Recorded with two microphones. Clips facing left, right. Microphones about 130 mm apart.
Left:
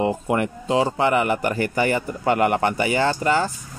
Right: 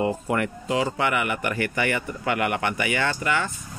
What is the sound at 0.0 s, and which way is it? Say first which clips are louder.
Speech: left 3 dB; 20° left (ahead or behind).